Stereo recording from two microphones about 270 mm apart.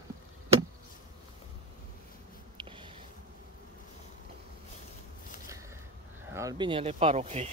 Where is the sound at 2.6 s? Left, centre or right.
Centre.